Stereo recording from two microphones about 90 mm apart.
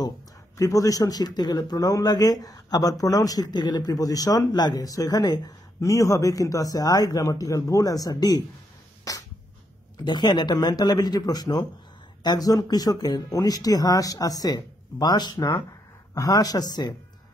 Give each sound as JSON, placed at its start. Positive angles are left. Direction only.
{"t": 0.6, "sound": "speech", "side_deg": 40}
{"t": 10.0, "sound": "speech", "side_deg": 55}